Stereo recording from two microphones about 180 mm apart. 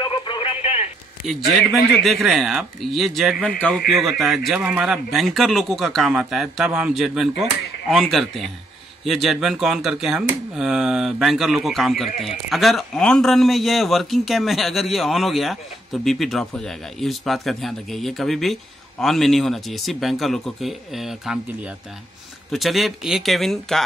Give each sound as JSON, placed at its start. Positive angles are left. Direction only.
{"t": 0.0, "sound": "telephone", "side_deg": 30}
{"t": 2.0, "sound": "speech", "side_deg": 0}